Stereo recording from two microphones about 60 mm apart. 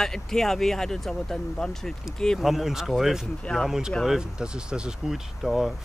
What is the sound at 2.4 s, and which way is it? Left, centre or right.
Speech, centre.